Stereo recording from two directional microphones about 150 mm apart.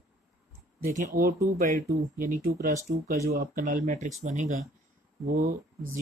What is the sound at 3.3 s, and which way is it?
Speech, 65° right (ahead or behind).